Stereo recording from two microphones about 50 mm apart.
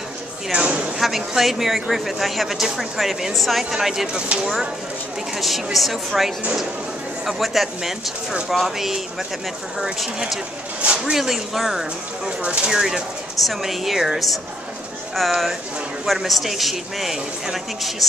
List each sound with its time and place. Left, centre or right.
0.5 s a sound: centre
0.9 s speech: centre
10.8 s speech: centre
11.1 s speech: centre
12.3 s speech: right
13.4 s speech: centre